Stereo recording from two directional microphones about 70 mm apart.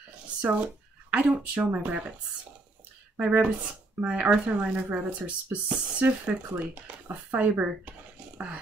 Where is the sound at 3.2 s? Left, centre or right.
Centre.